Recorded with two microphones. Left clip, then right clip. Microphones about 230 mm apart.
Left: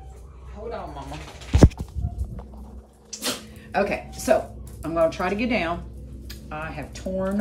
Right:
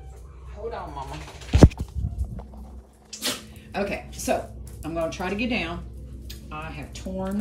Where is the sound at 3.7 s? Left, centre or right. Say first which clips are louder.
Left 5 dB; centre.